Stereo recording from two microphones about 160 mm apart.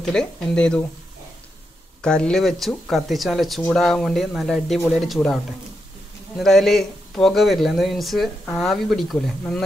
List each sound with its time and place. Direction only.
0.0 s speech: 5° left (ahead or behind)
2.0 s speech: 5° left (ahead or behind)